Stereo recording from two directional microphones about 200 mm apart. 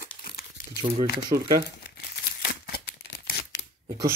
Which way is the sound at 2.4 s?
55° left (ahead or behind).